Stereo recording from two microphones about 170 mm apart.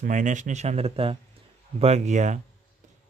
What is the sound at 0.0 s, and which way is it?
Speech, 45° right (ahead or behind).